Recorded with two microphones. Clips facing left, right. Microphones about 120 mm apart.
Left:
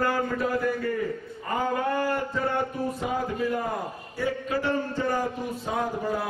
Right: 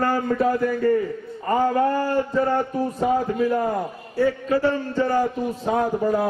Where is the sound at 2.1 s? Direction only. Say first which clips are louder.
Right 6 dB; 35° right (ahead or behind).